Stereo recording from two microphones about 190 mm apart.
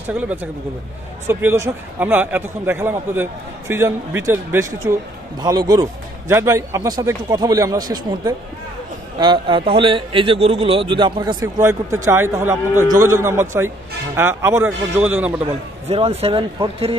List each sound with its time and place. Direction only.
0.1 s a man's voice: 5° right (ahead or behind)
15.9 s speech: 30° right (ahead or behind)